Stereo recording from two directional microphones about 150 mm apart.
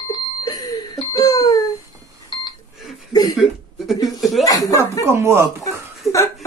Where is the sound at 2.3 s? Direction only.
30° left (ahead or behind).